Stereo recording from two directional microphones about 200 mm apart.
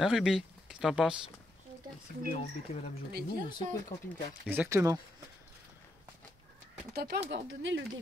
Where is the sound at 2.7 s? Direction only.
30° left (ahead or behind).